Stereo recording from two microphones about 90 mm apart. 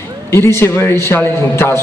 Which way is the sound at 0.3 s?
30° left (ahead or behind).